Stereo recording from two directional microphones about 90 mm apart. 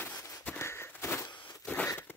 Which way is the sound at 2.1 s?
25° left (ahead or behind).